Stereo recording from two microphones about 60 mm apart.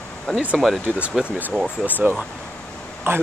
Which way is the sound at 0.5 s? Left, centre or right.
Centre.